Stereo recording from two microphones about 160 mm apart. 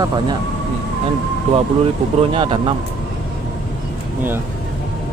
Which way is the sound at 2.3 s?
30° right (ahead or behind).